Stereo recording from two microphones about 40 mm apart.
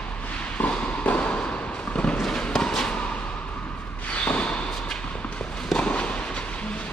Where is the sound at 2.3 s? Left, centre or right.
Centre.